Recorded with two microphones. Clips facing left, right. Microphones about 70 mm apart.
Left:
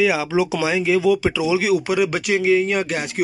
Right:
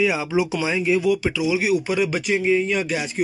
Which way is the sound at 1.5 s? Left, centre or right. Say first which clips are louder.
Left 2 dB; left.